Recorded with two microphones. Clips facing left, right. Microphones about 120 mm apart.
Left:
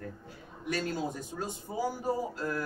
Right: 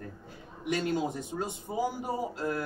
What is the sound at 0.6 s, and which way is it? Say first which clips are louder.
A man's voice: right 3 dB; 15° right (ahead or behind).